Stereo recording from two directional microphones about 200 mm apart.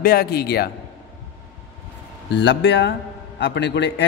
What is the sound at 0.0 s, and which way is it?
Speech, 50° left (ahead or behind).